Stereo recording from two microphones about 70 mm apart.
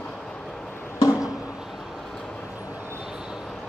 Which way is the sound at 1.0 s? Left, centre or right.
Left.